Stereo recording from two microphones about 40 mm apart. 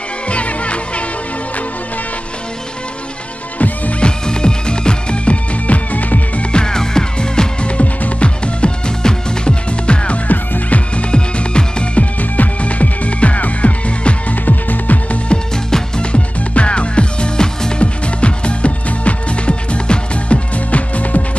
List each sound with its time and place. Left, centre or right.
0.3 s music: left
3.5 s music: left
4.0 s music: left
6.5 s music: centre
7.6 s music: left
10.2 s music: left
11.0 s music: left
14.4 s music: left
15.2 s music: centre; by 21.2 s left